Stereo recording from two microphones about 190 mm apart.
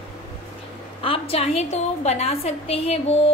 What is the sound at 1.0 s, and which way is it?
A woman's voice, 30° left (ahead or behind).